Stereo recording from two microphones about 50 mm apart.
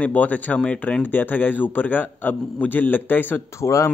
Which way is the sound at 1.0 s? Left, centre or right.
Left.